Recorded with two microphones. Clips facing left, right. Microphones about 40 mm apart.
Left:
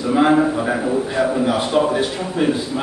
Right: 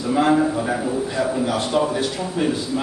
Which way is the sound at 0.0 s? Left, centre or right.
Centre.